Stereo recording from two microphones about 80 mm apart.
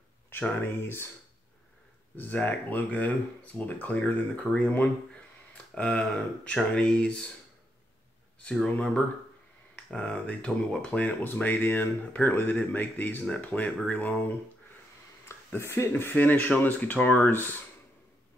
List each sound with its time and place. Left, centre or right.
0.3 s speech: left
2.1 s speech: left
8.5 s speech: centre
9.8 s speech: centre
15.2 s speech: left